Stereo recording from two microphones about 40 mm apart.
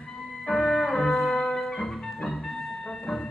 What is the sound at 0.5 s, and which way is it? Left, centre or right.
Music, centre.